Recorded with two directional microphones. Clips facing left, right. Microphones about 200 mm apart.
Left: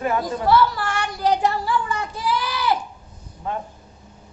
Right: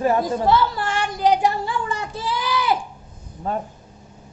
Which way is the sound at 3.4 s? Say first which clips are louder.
Right 3 dB; 35° right (ahead or behind).